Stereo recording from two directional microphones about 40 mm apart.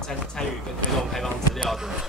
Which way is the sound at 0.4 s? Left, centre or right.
Centre.